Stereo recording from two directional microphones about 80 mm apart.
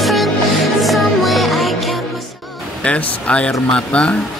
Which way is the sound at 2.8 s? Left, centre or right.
Centre.